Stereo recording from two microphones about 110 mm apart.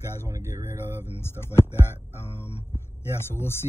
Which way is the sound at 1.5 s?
20° left (ahead or behind).